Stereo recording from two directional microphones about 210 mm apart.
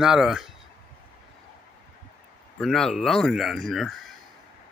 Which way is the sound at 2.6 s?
Centre (ahead or behind).